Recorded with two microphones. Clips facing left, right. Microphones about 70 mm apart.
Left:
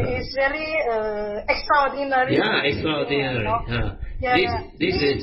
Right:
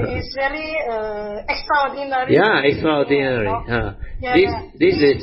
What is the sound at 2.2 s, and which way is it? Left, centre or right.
Speech, right.